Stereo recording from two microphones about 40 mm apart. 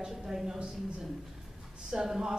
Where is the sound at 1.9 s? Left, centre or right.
Centre.